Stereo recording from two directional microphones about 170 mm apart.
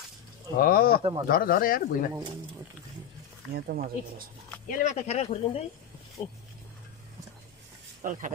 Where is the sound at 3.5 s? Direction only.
60° right (ahead or behind).